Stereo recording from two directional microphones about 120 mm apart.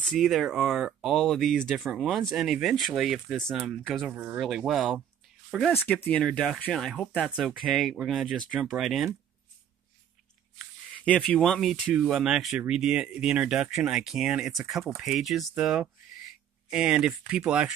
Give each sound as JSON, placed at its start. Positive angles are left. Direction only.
{"t": 0.0, "sound": "speech", "side_deg": 0}
{"t": 4.1, "sound": "speech", "side_deg": -15}
{"t": 4.4, "sound": "speech", "side_deg": 0}
{"t": 6.0, "sound": "speech", "side_deg": 10}
{"t": 11.1, "sound": "speech", "side_deg": 10}